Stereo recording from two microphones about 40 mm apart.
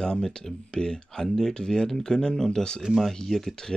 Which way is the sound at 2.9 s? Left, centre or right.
Centre.